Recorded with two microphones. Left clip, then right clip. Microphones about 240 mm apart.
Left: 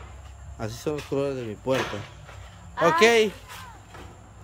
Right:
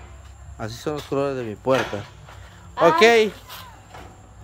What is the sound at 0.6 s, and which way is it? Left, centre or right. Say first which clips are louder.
A man's voice: right 2 dB; centre.